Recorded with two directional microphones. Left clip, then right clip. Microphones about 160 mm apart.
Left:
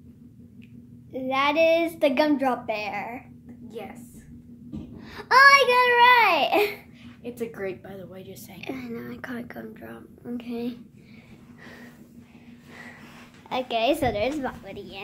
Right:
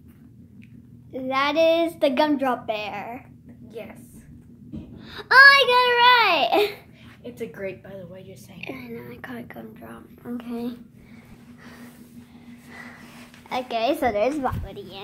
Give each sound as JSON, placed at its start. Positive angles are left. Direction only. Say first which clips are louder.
{"t": 1.1, "sound": "a child's voice", "louder": "right 1 dB", "side_deg": -10}
{"t": 3.6, "sound": "a woman's voice", "louder": "even", "side_deg": 20}
{"t": 5.0, "sound": "a child's voice", "louder": "right 3 dB", "side_deg": 0}
{"t": 7.2, "sound": "a woman's voice", "louder": "even", "side_deg": 25}
{"t": 7.8, "sound": "a woman's voice", "louder": "right 1 dB", "side_deg": 45}
{"t": 8.5, "sound": "a woman's voice", "louder": "even", "side_deg": 15}
{"t": 10.2, "sound": "a child's voice", "louder": "right 1 dB", "side_deg": 0}
{"t": 13.5, "sound": "a woman's voice", "louder": "even", "side_deg": 10}
{"t": 14.0, "sound": "a child's voice", "louder": "right 3 dB", "side_deg": -5}